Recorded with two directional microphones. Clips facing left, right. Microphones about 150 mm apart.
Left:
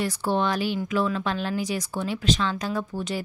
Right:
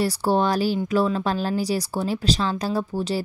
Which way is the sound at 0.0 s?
35° right (ahead or behind).